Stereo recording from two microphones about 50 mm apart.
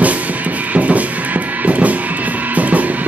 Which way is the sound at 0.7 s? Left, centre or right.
Right.